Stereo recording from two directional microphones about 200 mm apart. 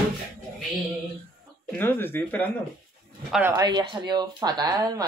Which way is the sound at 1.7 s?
10° left (ahead or behind).